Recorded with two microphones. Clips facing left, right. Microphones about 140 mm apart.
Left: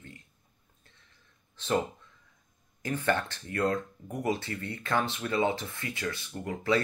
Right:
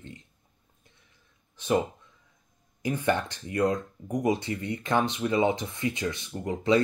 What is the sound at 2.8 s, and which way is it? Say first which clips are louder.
Speech: right 2 dB; 15° right (ahead or behind).